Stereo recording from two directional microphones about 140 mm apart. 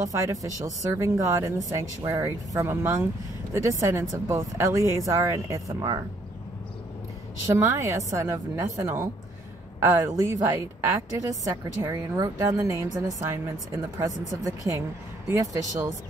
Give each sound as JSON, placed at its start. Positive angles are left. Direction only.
{"t": 0.0, "sound": "a woman's voice", "side_deg": -20}
{"t": 7.4, "sound": "a woman's voice", "side_deg": -20}